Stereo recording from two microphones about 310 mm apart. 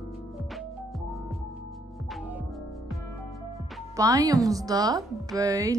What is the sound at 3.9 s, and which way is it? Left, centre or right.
A woman's voice, centre.